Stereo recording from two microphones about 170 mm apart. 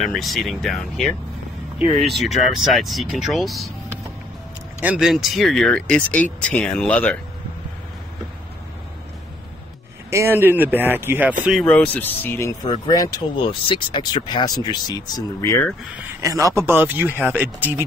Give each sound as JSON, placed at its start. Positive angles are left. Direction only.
{"t": 0.0, "sound": "speech", "side_deg": 0}
{"t": 4.7, "sound": "speech", "side_deg": -5}
{"t": 10.0, "sound": "speech", "side_deg": -15}
{"t": 11.6, "sound": "speech", "side_deg": 10}
{"t": 16.2, "sound": "speech", "side_deg": -20}